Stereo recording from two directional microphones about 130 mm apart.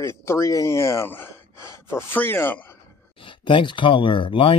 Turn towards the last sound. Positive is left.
turn(degrees=40)  # may be behind; listen again after turning